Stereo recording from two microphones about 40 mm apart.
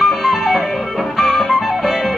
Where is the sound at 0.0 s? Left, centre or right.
Centre.